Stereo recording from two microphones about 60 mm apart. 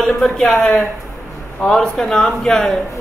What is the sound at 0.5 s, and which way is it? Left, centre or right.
A man's voice, centre.